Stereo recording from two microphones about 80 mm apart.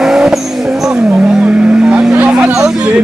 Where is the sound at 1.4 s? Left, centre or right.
Centre.